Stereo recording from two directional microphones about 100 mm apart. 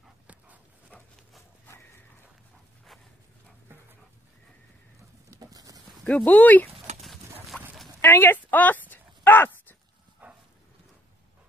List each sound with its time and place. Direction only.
0.3 s dog: 15° right (ahead or behind)
5.3 s clip-clop: 35° right (ahead or behind)
6.0 s speech: 10° left (ahead or behind)
7.5 s dog: 15° left (ahead or behind)
8.0 s a sound: 20° left (ahead or behind)